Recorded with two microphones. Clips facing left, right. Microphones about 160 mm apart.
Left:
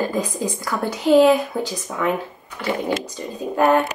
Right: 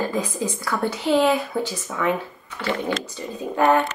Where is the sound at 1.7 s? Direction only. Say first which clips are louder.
Left 1 dB; 15° left (ahead or behind).